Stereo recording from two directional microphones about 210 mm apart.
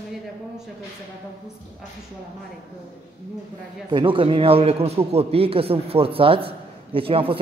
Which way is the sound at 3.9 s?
25° right (ahead or behind).